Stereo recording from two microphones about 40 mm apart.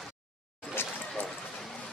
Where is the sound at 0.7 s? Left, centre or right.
Left.